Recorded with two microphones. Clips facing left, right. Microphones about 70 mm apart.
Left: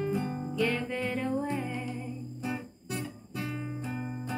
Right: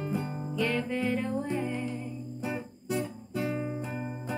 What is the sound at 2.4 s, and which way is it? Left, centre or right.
Music, right.